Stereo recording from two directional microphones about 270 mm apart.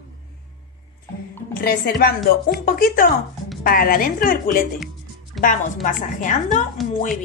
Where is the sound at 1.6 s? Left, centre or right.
Left.